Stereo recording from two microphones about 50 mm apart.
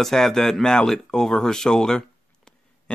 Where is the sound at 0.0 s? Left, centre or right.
Centre.